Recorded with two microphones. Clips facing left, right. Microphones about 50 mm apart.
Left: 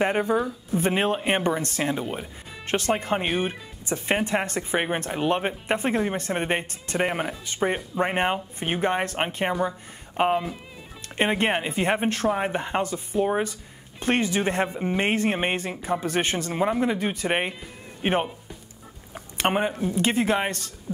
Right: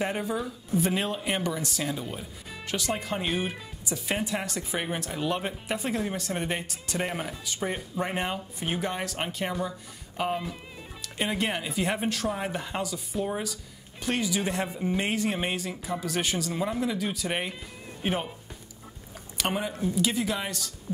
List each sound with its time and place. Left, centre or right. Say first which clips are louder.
0.0 s speech: left 7 dB; left